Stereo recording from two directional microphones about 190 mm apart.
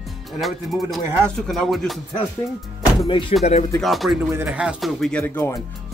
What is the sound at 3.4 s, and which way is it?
Speech, 35° left (ahead or behind).